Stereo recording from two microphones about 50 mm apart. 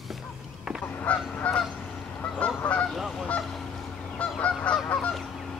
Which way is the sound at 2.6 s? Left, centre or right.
Left.